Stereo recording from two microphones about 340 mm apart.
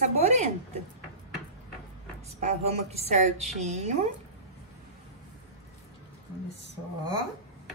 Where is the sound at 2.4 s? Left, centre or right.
Centre.